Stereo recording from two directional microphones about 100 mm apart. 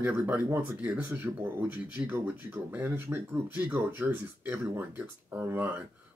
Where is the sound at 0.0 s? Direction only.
15° right (ahead or behind).